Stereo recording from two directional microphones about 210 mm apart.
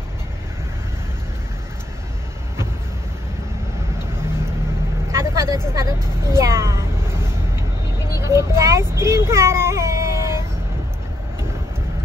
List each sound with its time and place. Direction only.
5.1 s vehicle: 15° right (ahead or behind)
5.7 s speech: 15° right (ahead or behind)